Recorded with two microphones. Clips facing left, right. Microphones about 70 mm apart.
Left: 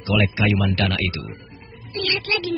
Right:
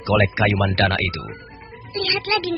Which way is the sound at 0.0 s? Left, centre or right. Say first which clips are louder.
Right 3 dB; right.